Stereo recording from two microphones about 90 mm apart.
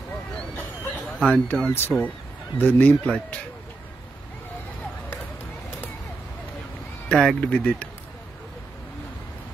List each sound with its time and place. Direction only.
1.2 s speech: 15° left (ahead or behind)
7.1 s speech: 5° left (ahead or behind)